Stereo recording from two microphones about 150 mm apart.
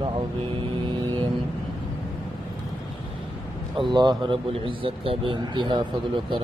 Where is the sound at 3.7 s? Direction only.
30° right (ahead or behind).